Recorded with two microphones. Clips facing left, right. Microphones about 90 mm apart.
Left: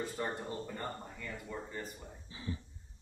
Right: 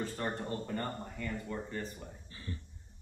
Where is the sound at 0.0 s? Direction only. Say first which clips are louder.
Right 1 dB; 5° left (ahead or behind).